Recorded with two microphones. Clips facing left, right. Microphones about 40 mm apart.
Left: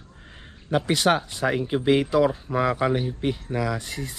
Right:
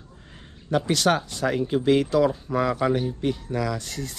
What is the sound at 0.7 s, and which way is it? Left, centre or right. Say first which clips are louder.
Speech: even; centre.